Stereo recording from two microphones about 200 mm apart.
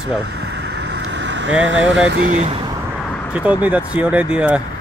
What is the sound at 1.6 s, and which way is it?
Speech, 70° right (ahead or behind).